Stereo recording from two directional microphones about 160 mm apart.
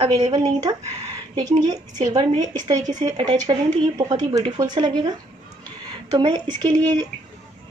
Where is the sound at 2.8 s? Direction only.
50° right (ahead or behind).